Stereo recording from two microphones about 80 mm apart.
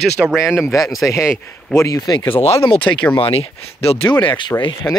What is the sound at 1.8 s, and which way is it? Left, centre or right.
Speech, left.